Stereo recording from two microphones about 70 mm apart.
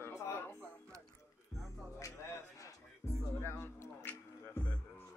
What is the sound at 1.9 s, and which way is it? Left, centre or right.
Music, left.